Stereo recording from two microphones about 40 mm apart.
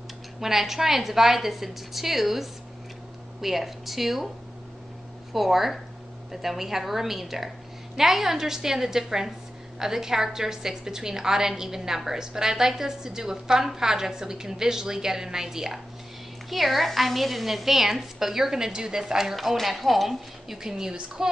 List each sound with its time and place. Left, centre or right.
0.4 s a woman's voice: centre
5.3 s a woman's voice: centre
16.4 s a woman's voice: centre
19.3 s a woman's voice: centre
20.7 s a woman's voice: centre